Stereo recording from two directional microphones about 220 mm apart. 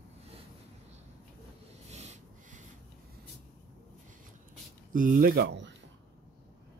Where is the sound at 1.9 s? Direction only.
30° right (ahead or behind).